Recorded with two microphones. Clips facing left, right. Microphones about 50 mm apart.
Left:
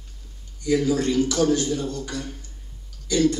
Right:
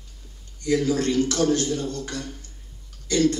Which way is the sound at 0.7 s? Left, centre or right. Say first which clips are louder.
Left 1 dB; centre.